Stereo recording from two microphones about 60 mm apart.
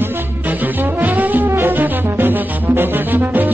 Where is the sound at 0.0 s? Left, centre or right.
Right.